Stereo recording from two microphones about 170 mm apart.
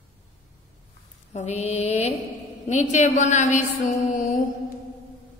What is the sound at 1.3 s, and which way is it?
Mantra, 40° left (ahead or behind).